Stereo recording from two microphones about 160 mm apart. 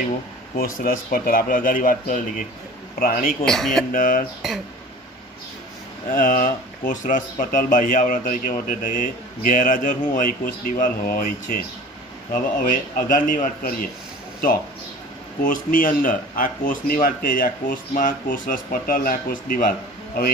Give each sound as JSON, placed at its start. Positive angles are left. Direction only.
{"t": 0.6, "sound": "speech", "side_deg": 60}
{"t": 3.4, "sound": "speech", "side_deg": 0}
{"t": 3.9, "sound": "speech", "side_deg": 60}
{"t": 6.1, "sound": "speech", "side_deg": 55}
{"t": 15.4, "sound": "speech", "side_deg": 55}